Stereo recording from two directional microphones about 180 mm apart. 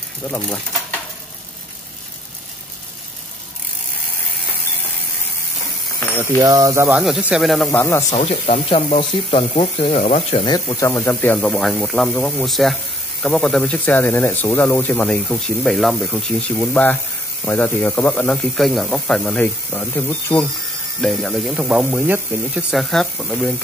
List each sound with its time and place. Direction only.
6.1 s speech: 15° right (ahead or behind); by 8.0 s 10° left (ahead or behind)
8.1 s speech: 40° left (ahead or behind)
10.4 s speech: 20° left (ahead or behind)
21.0 s speech: centre (ahead or behind)